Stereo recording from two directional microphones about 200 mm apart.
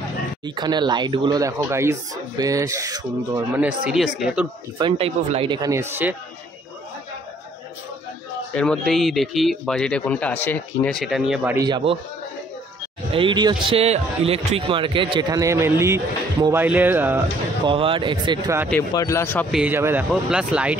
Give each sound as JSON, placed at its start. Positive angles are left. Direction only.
{"t": 0.6, "sound": "a man's voice", "side_deg": -20}
{"t": 3.5, "sound": "speech", "side_deg": -5}
{"t": 4.7, "sound": "a man's voice", "side_deg": -25}
{"t": 8.5, "sound": "speech", "side_deg": 0}
{"t": 11.5, "sound": "a man's voice", "side_deg": -20}
{"t": 13.1, "sound": "a man's voice", "side_deg": -25}
{"t": 17.6, "sound": "a man's voice", "side_deg": -25}
{"t": 18.7, "sound": "speech", "side_deg": 15}
{"t": 19.5, "sound": "speech", "side_deg": -10}